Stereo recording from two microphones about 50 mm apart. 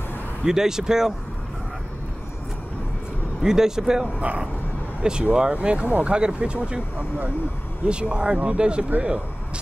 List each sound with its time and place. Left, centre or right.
0.5 s speech: centre
3.4 s speech: centre
4.2 s speech: right
5.0 s speech: centre